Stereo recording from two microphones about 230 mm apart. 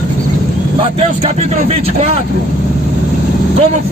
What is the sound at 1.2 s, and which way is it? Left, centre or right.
Speech, right.